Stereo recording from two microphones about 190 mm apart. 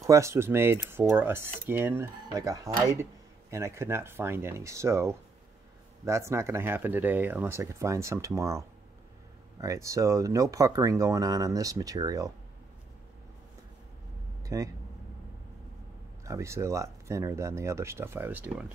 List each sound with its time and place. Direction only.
0.0 s speech: 15° right (ahead or behind)
14.4 s a sound: 15° right (ahead or behind)
16.3 s speech: 15° right (ahead or behind)